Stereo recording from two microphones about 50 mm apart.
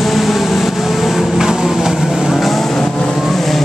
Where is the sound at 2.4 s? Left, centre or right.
Centre.